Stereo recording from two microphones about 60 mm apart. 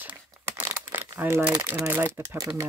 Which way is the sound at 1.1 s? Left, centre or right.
Right.